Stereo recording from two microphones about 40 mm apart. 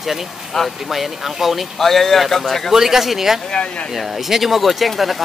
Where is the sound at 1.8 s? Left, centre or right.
Centre.